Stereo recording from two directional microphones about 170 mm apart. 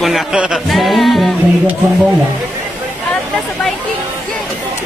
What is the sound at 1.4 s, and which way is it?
Speech, 10° right (ahead or behind).